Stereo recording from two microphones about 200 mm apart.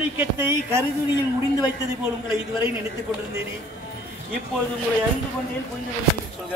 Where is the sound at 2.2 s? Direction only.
25° left (ahead or behind).